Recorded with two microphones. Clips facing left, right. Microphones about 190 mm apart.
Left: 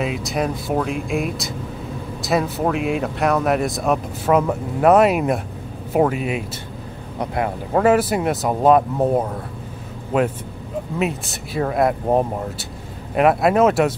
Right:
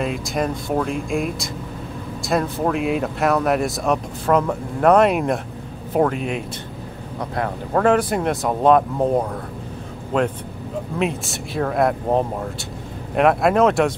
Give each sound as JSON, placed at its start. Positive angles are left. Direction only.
{"t": 0.0, "sound": "speech", "side_deg": 0}